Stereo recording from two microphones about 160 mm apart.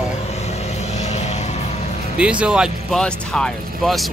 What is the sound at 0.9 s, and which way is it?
Vehicle, 45° left (ahead or behind).